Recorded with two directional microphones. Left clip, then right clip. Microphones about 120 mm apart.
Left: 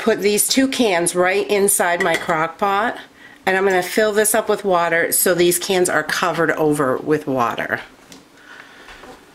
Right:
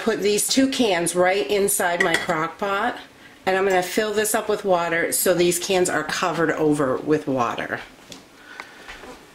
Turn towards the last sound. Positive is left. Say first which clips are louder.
# left 4 dB
turn(degrees=30)  # may be behind; listen again after turning